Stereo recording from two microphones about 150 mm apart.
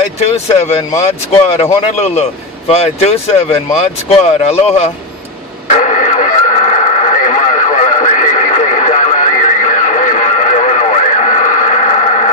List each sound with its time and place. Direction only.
0.2 s speech: 40° left (ahead or behind)
5.7 s radio: 50° left (ahead or behind)